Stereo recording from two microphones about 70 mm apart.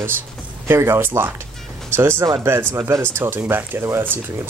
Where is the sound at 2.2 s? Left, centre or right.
Right.